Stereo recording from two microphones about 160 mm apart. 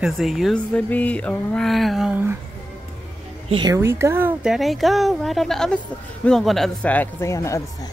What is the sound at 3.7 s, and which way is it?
Speech, 15° right (ahead or behind).